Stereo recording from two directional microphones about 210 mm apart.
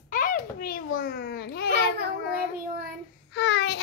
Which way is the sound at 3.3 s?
55° left (ahead or behind).